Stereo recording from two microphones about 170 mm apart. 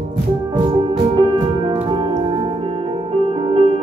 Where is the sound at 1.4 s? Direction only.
30° right (ahead or behind).